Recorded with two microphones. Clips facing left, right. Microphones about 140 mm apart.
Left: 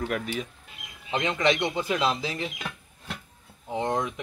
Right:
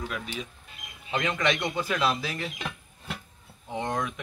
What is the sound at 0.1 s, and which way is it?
Speech, 55° left (ahead or behind).